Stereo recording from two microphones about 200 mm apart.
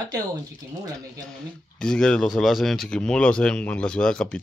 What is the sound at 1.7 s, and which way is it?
Speech, 5° left (ahead or behind).